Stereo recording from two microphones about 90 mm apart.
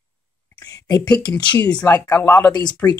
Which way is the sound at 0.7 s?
45° left (ahead or behind).